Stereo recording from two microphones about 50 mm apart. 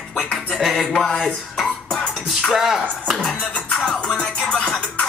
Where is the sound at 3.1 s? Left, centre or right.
Centre.